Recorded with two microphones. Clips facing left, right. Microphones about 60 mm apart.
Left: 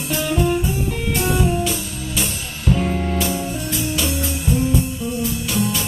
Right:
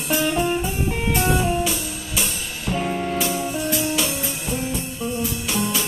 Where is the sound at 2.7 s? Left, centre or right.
Centre.